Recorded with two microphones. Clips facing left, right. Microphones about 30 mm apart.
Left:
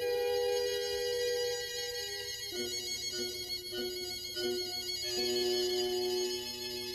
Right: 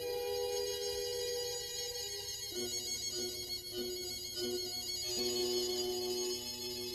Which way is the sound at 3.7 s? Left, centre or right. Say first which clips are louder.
Left 3 dB; left.